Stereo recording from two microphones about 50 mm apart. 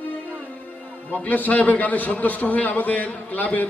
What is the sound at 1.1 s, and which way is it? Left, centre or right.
A man's voice, left.